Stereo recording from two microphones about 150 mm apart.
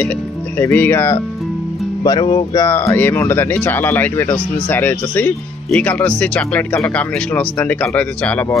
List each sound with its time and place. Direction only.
0.6 s speech: 15° left (ahead or behind)
2.0 s speech: 30° left (ahead or behind)
2.5 s speech: 20° left (ahead or behind)